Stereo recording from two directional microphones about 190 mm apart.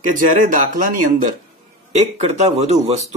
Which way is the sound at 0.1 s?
45° right (ahead or behind).